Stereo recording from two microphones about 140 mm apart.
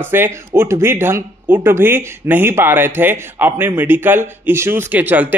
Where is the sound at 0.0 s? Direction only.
15° right (ahead or behind).